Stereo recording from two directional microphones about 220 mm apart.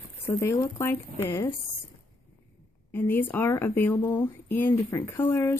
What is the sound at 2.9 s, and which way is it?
Speech, 10° left (ahead or behind).